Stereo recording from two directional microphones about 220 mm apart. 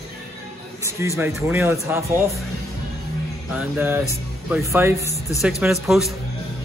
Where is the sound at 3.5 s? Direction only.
10° right (ahead or behind).